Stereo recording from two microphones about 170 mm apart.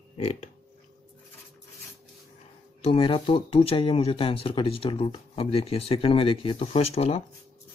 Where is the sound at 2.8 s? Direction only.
30° left (ahead or behind).